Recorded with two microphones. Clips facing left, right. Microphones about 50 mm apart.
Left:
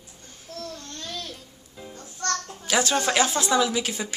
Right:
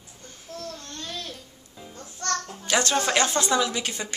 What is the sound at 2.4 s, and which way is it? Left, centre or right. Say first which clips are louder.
A woman's voice: even; centre.